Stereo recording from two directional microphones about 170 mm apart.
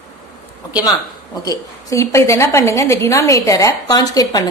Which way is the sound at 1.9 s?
15° left (ahead or behind).